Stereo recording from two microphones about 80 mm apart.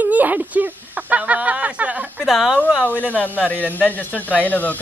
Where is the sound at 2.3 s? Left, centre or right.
Centre.